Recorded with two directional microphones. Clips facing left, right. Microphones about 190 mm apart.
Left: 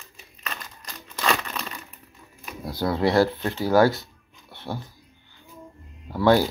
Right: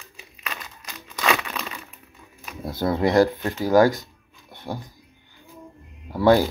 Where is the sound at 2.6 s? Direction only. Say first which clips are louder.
Right 1 dB; 20° right (ahead or behind).